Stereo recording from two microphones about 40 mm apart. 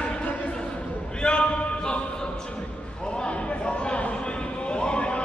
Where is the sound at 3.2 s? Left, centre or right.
Left.